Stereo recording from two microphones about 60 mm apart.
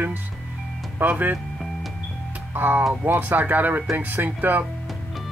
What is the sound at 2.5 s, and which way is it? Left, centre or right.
Speech, right.